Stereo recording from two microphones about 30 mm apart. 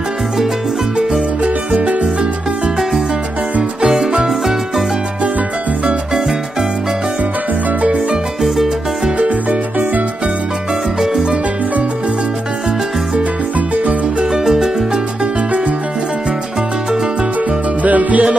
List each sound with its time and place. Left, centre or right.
1.4 s music: right
3.8 s music: centre
8.4 s music: centre
9.5 s music: right
14.3 s music: centre
17.8 s music: right